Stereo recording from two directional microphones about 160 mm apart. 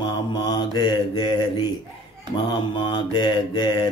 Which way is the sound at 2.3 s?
30° left (ahead or behind).